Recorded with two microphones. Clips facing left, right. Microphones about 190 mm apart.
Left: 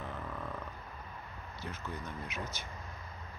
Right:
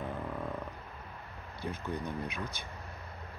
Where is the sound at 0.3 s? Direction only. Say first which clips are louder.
Right 4 dB; 20° right (ahead or behind).